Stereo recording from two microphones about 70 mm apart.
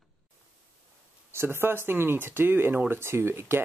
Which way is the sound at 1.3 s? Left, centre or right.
Right.